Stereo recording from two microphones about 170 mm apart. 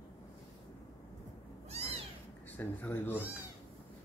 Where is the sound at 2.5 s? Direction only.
10° left (ahead or behind).